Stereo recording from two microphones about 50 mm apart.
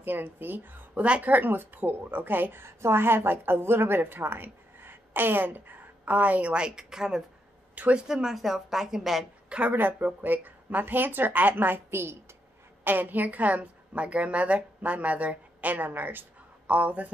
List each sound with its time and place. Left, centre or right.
0.0 s a woman's voice: right
0.9 s speech: right
1.2 s a woman's voice: right
2.6 s a woman's voice: right
6.5 s a woman's voice: centre
7.7 s speech: right
8.1 s a woman's voice: centre
9.7 s a woman's voice: right
11.9 s a woman's voice: right
12.8 s a woman's voice: right
16.6 s a woman's voice: right